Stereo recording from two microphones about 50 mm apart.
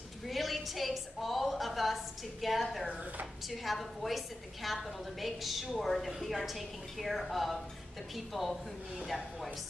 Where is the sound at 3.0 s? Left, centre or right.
Right.